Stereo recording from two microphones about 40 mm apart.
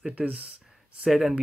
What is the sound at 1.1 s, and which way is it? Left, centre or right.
Speech, centre.